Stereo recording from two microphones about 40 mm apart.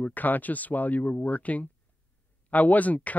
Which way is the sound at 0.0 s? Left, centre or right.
Left.